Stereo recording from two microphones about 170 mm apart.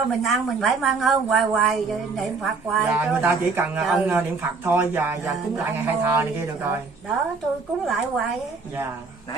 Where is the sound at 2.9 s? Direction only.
10° right (ahead or behind).